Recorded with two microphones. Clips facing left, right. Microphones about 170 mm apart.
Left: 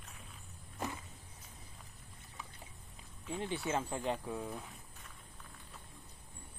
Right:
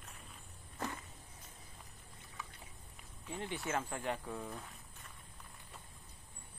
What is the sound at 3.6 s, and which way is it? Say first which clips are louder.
Speech: left 1 dB; 15° left (ahead or behind).